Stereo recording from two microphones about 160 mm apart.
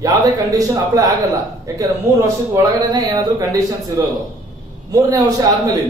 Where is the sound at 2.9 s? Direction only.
20° right (ahead or behind).